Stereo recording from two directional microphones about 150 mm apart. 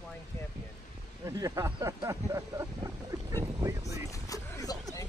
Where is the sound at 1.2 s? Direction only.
20° right (ahead or behind).